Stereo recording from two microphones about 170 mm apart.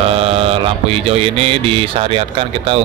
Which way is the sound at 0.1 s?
35° right (ahead or behind).